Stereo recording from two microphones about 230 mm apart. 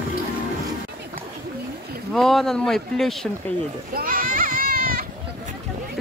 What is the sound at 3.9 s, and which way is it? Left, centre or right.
Children playing, right.